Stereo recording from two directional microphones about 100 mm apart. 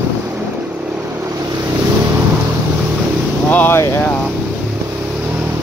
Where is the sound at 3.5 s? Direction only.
20° left (ahead or behind).